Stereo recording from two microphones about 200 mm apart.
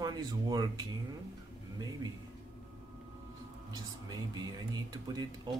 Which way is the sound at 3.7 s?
20° right (ahead or behind).